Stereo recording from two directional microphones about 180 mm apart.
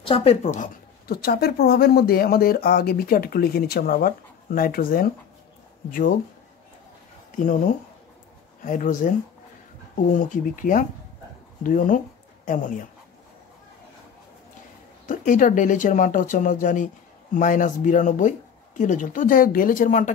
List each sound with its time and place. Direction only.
0.0 s speech: 30° left (ahead or behind)
1.0 s speech: 60° left (ahead or behind)
7.3 s speech: 45° left (ahead or behind)
10.1 s speech: 50° left (ahead or behind)
15.0 s speech: 45° left (ahead or behind)